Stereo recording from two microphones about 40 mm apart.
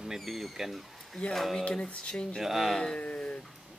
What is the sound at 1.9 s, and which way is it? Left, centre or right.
Speech, left.